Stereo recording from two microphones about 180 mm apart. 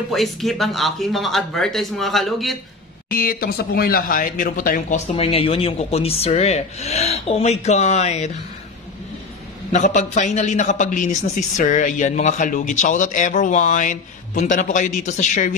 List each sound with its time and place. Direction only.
0.1 s speech: centre (ahead or behind)
3.1 s speech: 55° left (ahead or behind); by 8.3 s 40° left (ahead or behind)
9.7 s a man's voice: 45° left (ahead or behind)